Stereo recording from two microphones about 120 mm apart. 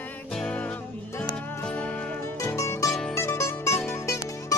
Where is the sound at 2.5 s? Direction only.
25° left (ahead or behind).